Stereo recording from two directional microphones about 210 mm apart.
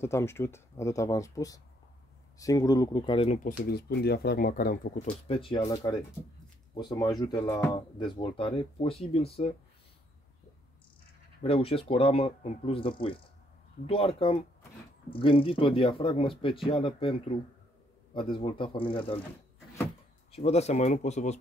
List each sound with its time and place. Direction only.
0.0 s speech: 10° left (ahead or behind)
3.6 s speech: 50° left (ahead or behind)
5.0 s speech: 25° left (ahead or behind)
11.4 s speech: 25° left (ahead or behind)
18.1 s speech: 25° left (ahead or behind)
20.2 s speech: 30° left (ahead or behind)